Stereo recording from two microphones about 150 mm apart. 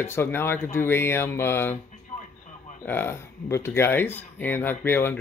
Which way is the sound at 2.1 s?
55° left (ahead or behind).